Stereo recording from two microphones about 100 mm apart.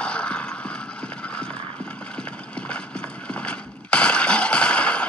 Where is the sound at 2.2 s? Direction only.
10° left (ahead or behind).